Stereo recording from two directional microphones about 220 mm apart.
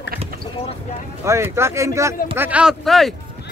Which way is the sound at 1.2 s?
10° right (ahead or behind).